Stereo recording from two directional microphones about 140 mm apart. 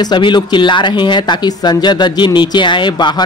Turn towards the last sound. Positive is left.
turn(degrees=30)  # may be behind; listen again after turning